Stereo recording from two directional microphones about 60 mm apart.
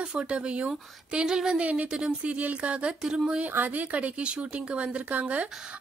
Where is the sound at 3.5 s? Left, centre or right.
Right.